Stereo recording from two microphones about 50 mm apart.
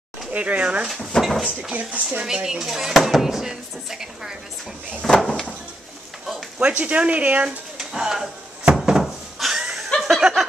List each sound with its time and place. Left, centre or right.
0.3 s speech: right
1.1 s speech: centre
1.7 s speech: right
2.2 s speech: centre
5.0 s speech: centre
6.6 s speech: right
7.9 s a sound: centre
9.4 s snicker: centre
9.9 s chuckle: centre